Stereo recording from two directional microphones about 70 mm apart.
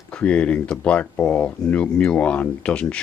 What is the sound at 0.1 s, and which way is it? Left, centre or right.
Speech, centre.